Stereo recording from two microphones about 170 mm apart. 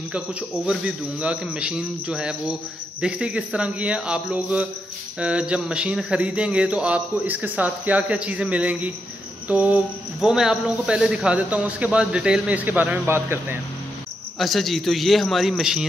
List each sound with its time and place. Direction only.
0.1 s a man's voice: 5° right (ahead or behind)
14.4 s a man's voice: centre (ahead or behind)